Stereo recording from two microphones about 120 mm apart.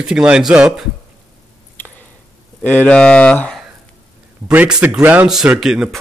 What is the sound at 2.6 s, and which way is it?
Speech, 10° left (ahead or behind).